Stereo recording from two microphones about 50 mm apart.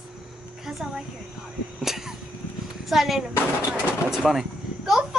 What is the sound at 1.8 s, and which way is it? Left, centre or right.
Cough, centre.